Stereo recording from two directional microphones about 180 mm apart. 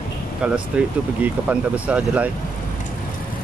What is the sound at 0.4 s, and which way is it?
Speech, 5° right (ahead or behind).